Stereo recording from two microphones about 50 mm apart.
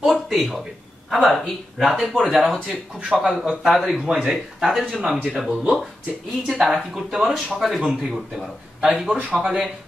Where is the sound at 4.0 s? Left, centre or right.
Centre.